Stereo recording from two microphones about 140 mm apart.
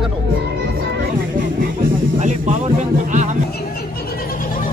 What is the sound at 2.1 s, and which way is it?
Music, 60° right (ahead or behind).